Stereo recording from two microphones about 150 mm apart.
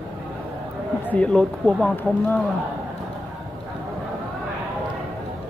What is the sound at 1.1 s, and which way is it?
Speech, 5° left (ahead or behind).